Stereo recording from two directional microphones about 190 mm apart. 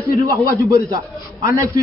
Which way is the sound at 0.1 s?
15° right (ahead or behind).